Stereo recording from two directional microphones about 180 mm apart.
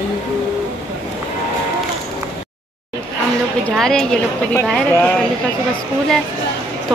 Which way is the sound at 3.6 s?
5° left (ahead or behind).